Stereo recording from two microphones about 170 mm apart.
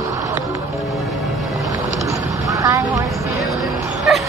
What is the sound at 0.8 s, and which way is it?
Music, centre (ahead or behind).